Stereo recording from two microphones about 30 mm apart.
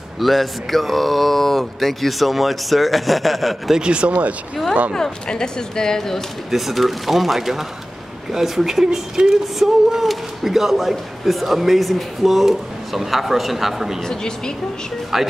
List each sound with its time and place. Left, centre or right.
0.2 s speech: centre
3.8 s speech: right
5.3 s speech: left
6.5 s speech: centre
9.2 s speech: right
9.6 s speech: centre
14.0 s speech: left
15.1 s speech: centre